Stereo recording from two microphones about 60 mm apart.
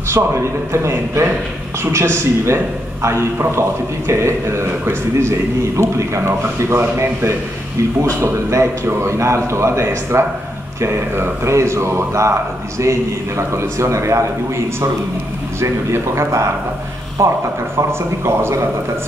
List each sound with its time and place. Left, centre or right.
0.1 s a man's voice: right
15.6 s a man's voice: right